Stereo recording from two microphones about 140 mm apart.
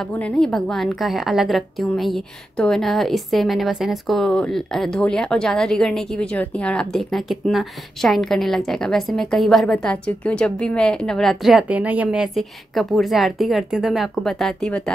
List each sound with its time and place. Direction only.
0.1 s a woman's voice: 5° left (ahead or behind)